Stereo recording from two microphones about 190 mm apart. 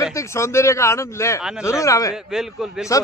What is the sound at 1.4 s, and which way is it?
Speech, 5° right (ahead or behind).